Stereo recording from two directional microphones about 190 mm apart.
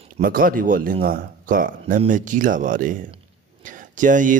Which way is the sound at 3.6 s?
45° right (ahead or behind).